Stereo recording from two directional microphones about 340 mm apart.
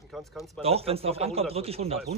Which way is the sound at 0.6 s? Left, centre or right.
Centre.